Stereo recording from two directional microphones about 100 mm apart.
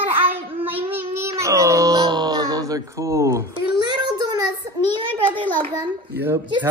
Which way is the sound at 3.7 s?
45° right (ahead or behind).